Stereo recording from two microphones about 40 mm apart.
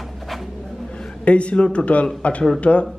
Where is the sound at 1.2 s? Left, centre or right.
Left.